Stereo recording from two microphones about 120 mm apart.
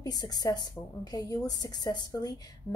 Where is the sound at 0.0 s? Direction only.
35° left (ahead or behind).